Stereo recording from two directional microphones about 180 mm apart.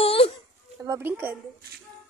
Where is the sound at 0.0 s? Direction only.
30° left (ahead or behind).